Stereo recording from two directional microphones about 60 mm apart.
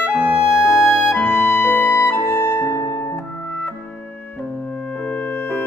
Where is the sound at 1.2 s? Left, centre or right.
Left.